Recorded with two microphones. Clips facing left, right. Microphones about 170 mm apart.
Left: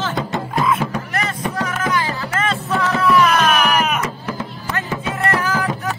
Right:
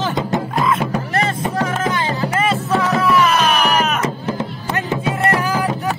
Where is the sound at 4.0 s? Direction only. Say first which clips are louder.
Right 4 dB; 25° right (ahead or behind).